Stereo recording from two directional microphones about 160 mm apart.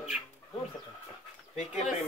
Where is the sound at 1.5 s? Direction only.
45° left (ahead or behind).